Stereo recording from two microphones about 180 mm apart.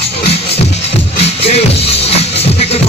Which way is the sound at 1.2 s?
35° left (ahead or behind).